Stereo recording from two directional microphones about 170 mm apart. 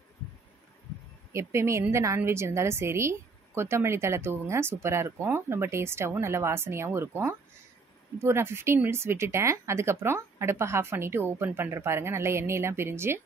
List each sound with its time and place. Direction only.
1.3 s a woman's voice: 15° right (ahead or behind)